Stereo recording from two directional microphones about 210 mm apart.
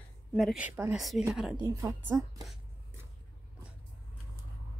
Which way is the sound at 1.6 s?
15° right (ahead or behind).